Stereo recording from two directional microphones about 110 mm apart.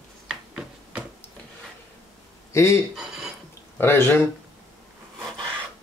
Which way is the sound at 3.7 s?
20° left (ahead or behind).